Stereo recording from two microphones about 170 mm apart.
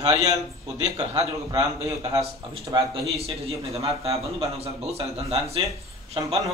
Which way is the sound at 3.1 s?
35° right (ahead or behind).